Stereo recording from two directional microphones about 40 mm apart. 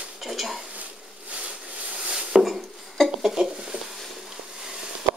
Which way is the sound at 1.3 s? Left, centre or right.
Right.